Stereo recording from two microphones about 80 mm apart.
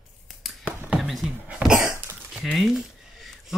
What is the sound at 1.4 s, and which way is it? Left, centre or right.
Cough, centre.